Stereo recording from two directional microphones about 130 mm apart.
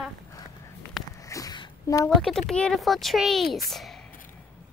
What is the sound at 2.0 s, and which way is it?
Speech, centre (ahead or behind).